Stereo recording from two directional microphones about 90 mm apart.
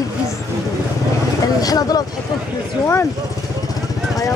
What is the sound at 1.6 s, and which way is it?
Speech, 45° left (ahead or behind).